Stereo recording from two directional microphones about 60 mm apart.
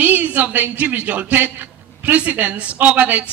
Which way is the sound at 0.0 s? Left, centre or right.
Right.